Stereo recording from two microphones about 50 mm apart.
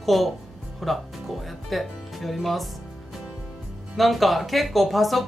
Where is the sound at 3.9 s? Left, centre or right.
Centre.